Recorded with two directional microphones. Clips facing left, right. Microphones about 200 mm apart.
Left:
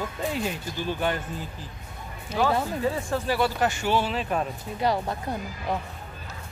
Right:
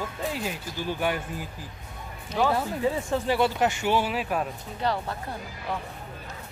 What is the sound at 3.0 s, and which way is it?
Speech, 20° right (ahead or behind).